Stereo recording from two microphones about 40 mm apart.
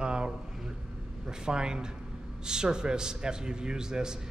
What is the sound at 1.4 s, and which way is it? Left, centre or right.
A man's voice, centre.